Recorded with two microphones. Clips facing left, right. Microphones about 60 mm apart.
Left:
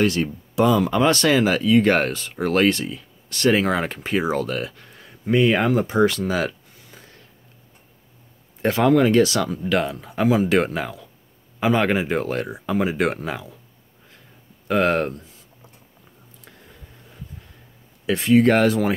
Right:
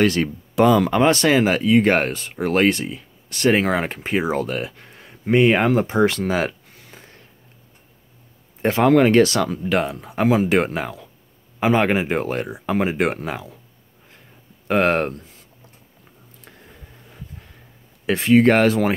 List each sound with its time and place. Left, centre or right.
0.0 s speech: right
0.6 s speech: right
1.0 s speech: right
8.9 s speech: right
9.7 s speech: right
10.1 s speech: right
10.5 s speech: right
12.6 s speech: right
12.9 s speech: right
14.7 s speech: right
18.0 s speech: right